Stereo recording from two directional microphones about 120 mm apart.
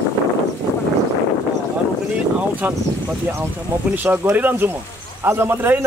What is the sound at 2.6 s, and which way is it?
A man's voice, 20° right (ahead or behind).